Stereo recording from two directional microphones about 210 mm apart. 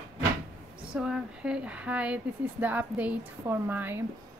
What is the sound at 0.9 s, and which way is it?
Speech, 5° right (ahead or behind).